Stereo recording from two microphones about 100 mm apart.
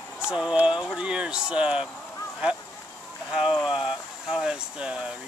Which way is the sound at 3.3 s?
5° right (ahead or behind).